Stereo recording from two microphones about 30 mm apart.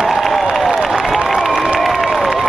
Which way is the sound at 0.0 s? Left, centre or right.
Centre.